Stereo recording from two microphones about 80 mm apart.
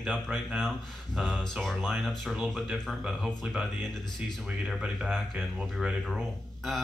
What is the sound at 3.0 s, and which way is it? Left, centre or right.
Speech, centre.